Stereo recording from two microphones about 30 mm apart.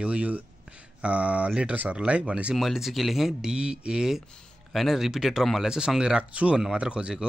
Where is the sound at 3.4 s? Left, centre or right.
Right.